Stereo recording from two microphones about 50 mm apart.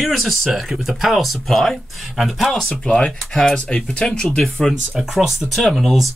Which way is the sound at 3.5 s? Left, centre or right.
Centre.